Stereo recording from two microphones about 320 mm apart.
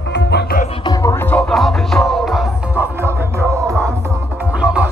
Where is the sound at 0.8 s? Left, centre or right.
Centre.